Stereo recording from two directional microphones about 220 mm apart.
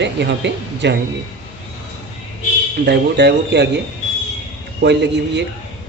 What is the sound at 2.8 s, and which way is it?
Speech, 50° right (ahead or behind).